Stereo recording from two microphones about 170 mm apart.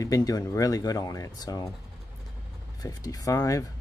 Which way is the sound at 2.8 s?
20° left (ahead or behind).